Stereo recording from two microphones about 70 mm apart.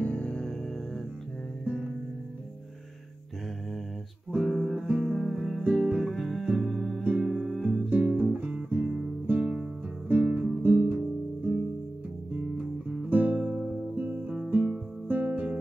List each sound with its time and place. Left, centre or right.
0.0 s music: centre
4.4 s music: centre
4.8 s music: centre
5.1 s music: centre
7.9 s music: right
13.1 s music: right